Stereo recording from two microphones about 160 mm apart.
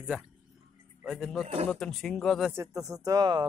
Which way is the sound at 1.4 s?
40° right (ahead or behind).